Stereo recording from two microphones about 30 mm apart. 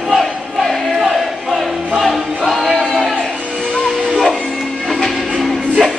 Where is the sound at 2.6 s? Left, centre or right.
Centre.